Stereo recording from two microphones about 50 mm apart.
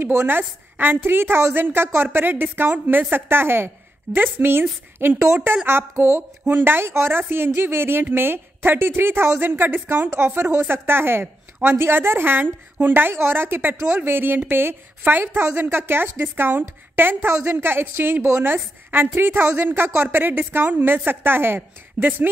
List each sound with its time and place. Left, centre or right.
0.0 s a woman's voice: right
6.5 s a woman's voice: right
22.0 s speech: right